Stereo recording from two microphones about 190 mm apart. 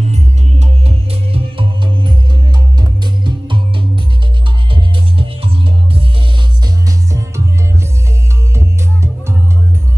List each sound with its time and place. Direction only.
0.1 s music: 35° right (ahead or behind)
7.1 s music: 15° right (ahead or behind)
8.5 s music: 15° right (ahead or behind)